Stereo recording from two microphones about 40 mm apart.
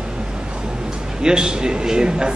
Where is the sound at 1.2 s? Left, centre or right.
Centre.